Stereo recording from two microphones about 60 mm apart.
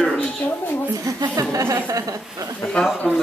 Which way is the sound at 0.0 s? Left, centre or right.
Centre.